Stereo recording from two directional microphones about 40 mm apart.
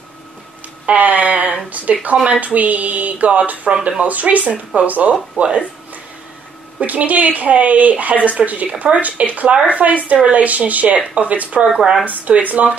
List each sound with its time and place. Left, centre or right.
0.8 s speech: right
6.8 s speech: right
11.6 s speech: centre
12.0 s speech: right